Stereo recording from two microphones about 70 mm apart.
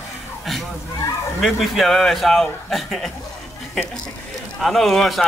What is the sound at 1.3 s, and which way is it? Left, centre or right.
A man's voice, centre.